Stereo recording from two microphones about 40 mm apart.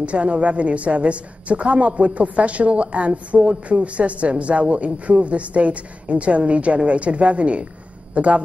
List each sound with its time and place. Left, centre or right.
0.0 s a woman's voice: right